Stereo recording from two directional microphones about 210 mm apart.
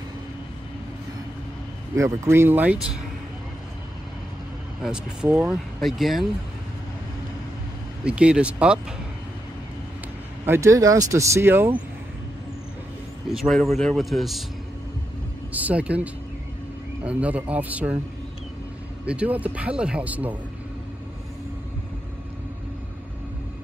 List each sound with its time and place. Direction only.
2.0 s speech: 15° right (ahead or behind)
4.8 s speech: 5° right (ahead or behind)
8.0 s speech: 5° right (ahead or behind)
10.4 s speech: 10° right (ahead or behind)
13.3 s speech: centre (ahead or behind)
15.5 s speech: 5° right (ahead or behind)
19.0 s speech: 5° right (ahead or behind)